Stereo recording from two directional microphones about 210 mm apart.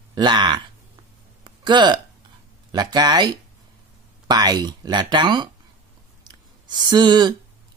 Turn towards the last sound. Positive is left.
turn(degrees=-20)  # may be behind; listen again after turning